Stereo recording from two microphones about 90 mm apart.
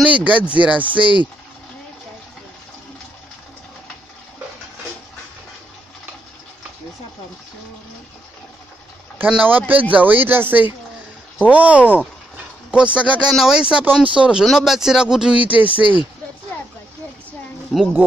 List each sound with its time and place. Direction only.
0.0 s speech: 15° right (ahead or behind)
9.2 s speech: 20° right (ahead or behind)
14.4 s speech: centre (ahead or behind)
15.7 s speech: 70° left (ahead or behind)
17.7 s insect: 5° right (ahead or behind)